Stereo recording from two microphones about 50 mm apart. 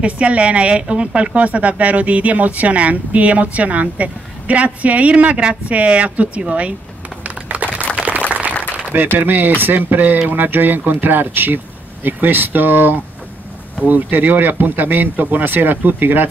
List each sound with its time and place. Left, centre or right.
0.0 s a woman's voice: right
7.2 s a sound: right
9.2 s speech: right